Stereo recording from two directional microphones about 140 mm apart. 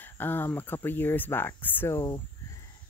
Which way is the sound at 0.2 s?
15° left (ahead or behind).